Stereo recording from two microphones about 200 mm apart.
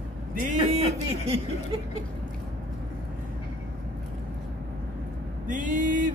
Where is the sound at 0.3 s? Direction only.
40° right (ahead or behind).